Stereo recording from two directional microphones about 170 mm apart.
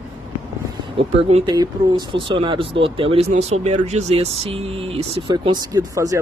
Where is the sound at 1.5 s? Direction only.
25° right (ahead or behind).